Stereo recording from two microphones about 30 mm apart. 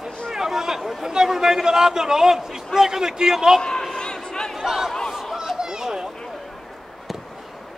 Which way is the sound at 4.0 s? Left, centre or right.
Left.